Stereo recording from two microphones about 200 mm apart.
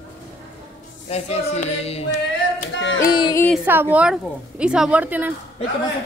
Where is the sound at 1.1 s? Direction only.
35° left (ahead or behind).